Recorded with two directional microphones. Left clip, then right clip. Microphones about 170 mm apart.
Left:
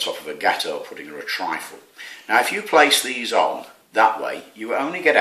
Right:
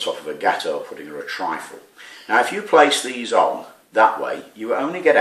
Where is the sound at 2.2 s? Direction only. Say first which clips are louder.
Right 1 dB; 50° left (ahead or behind).